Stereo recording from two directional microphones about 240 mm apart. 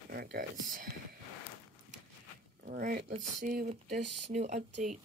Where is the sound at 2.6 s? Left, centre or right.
Right.